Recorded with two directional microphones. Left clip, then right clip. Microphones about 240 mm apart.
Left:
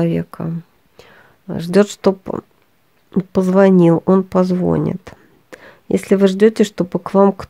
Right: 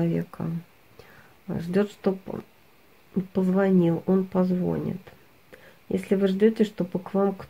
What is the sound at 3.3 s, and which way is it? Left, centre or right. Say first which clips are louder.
Speech: left 11 dB; left.